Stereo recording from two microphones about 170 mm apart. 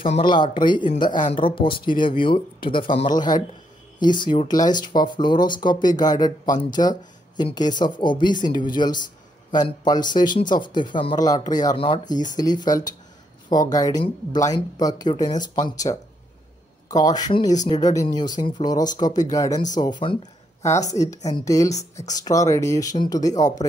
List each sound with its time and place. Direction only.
0.1 s speech: 25° left (ahead or behind)
20.9 s speech: 20° left (ahead or behind)